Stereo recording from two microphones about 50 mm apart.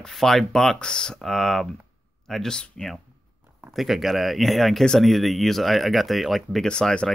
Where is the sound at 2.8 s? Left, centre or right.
Left.